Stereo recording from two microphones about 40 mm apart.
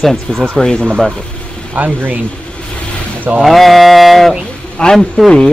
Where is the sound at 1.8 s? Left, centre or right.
Right.